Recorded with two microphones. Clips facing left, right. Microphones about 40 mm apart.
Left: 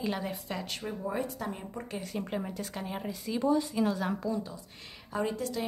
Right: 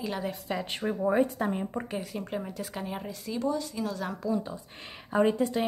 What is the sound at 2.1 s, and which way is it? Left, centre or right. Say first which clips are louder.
A woman's voice: even; centre.